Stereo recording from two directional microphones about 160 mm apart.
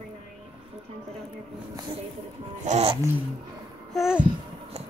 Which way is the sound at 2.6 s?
40° right (ahead or behind).